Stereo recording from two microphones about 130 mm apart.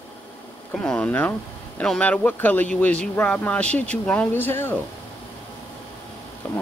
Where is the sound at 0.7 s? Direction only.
5° left (ahead or behind).